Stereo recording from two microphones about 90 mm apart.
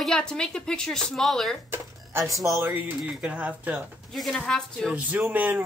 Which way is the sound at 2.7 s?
20° right (ahead or behind).